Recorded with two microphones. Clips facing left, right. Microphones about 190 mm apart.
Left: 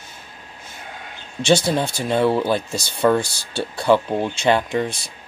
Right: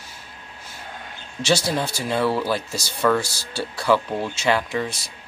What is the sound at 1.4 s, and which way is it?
Speech, 55° left (ahead or behind).